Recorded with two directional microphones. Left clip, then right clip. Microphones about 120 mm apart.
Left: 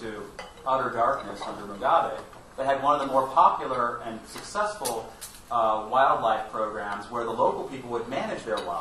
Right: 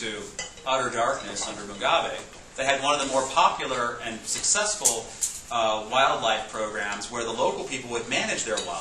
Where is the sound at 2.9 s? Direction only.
30° right (ahead or behind).